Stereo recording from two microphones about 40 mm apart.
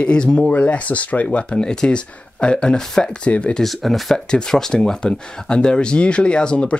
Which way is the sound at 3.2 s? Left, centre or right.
Left.